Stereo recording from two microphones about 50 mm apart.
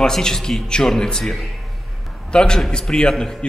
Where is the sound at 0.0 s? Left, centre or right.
Centre.